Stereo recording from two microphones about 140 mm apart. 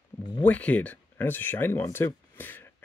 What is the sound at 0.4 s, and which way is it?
Speech, 10° left (ahead or behind).